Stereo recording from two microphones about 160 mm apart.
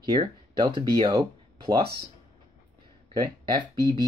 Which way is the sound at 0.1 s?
30° right (ahead or behind).